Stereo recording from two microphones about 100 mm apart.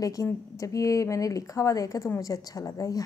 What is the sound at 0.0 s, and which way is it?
A woman's voice, 35° left (ahead or behind).